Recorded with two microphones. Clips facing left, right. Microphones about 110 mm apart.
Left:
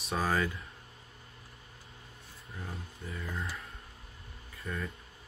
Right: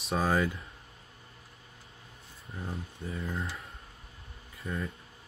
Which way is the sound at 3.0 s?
30° right (ahead or behind).